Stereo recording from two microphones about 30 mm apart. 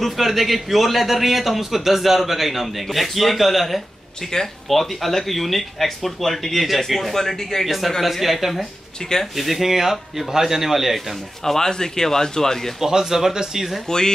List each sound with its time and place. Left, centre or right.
0.0 s a man's voice: centre
7.6 s a man's voice: centre
11.4 s speech: centre
12.8 s speech: centre
13.8 s speech: left